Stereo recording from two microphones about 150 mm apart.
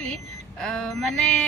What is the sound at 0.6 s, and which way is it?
Speech, 5° left (ahead or behind).